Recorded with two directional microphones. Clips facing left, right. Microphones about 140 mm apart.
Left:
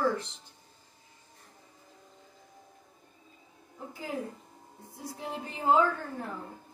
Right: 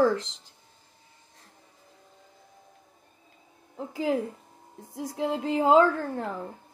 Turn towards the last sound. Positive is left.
turn(degrees=-90)